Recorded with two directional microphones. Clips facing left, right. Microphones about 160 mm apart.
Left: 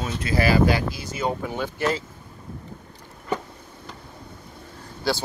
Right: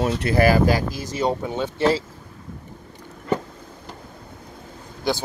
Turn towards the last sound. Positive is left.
turn(degrees=-20)  # may be behind; listen again after turning